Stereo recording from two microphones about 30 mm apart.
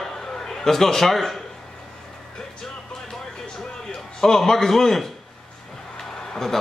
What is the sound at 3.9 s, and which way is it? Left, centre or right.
A man's voice, centre.